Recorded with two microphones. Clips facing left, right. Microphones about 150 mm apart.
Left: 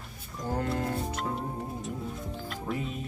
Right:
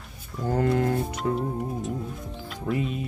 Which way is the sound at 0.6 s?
90° right.